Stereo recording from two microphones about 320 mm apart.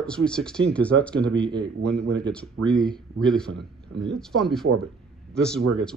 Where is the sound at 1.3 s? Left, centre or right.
Centre.